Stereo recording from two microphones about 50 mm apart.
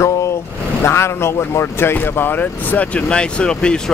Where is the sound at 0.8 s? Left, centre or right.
Left.